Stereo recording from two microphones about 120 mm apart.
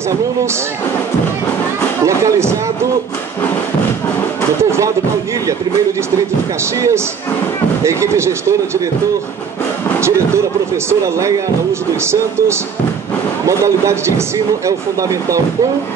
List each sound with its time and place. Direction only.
2.0 s speech: 25° right (ahead or behind)
4.6 s speech: 25° right (ahead or behind)
6.6 s speech: 25° right (ahead or behind)
9.9 s speech: 20° right (ahead or behind)